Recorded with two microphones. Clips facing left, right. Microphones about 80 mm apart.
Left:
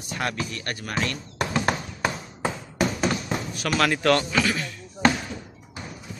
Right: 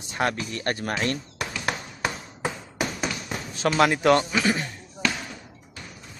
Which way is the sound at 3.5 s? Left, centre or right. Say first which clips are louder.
Right 4 dB; right.